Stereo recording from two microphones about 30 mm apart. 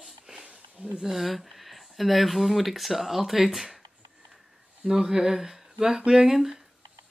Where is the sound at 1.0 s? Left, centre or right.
Centre.